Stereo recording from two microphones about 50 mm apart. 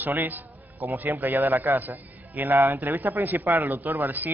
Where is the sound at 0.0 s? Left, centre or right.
Right.